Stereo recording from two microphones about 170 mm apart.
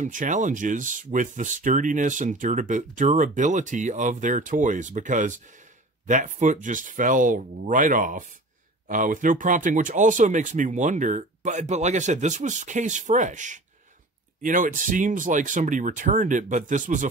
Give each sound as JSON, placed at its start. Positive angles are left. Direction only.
{"t": 0.0, "sound": "speech", "side_deg": -50}